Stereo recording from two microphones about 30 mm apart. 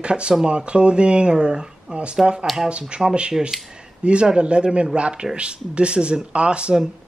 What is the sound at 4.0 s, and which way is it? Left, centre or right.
Speech, right.